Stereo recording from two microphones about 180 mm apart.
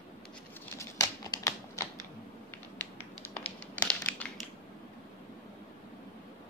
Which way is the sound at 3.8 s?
5° left (ahead or behind).